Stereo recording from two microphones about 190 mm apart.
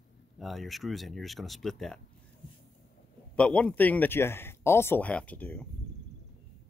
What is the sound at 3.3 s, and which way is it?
Speech, 5° left (ahead or behind).